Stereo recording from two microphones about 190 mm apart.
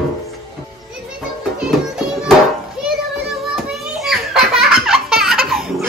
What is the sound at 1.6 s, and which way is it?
Music, 5° right (ahead or behind).